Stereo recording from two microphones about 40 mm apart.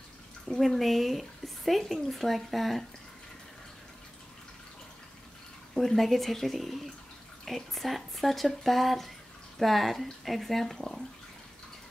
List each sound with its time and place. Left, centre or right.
0.6 s speech: centre
5.8 s speech: centre